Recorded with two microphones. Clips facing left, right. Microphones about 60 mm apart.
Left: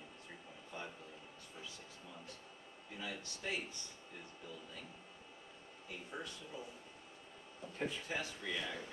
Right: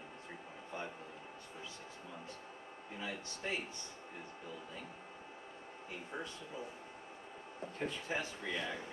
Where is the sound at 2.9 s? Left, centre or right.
Centre.